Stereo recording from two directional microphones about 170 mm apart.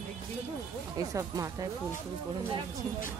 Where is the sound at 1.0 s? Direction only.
20° right (ahead or behind).